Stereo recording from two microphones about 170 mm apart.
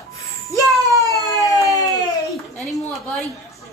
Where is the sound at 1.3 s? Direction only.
20° left (ahead or behind).